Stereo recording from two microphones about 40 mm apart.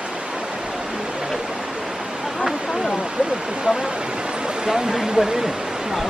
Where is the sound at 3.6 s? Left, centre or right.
Centre.